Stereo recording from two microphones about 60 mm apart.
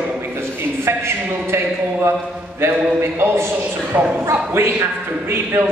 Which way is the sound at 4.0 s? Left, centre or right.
Centre.